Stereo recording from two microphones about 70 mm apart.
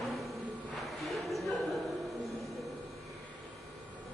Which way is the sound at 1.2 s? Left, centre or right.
Centre.